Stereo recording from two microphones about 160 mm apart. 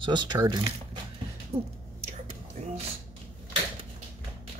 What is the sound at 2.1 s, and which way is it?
Whispering, 45° right (ahead or behind).